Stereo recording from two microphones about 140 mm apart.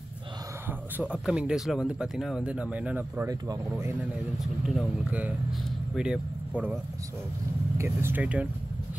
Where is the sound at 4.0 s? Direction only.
Centre (ahead or behind).